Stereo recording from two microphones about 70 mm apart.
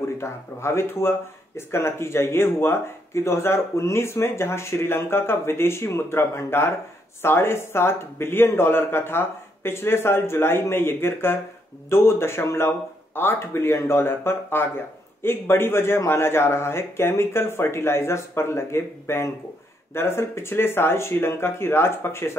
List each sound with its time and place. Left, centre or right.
0.2 s speech: left